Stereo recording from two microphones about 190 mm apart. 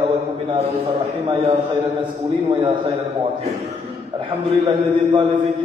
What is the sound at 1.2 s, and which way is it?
Speech, 25° right (ahead or behind).